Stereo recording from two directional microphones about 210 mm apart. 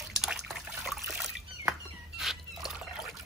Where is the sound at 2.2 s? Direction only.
Centre (ahead or behind).